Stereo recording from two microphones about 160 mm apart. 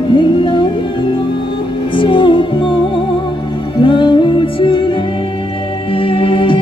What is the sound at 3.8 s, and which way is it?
Music, 30° left (ahead or behind).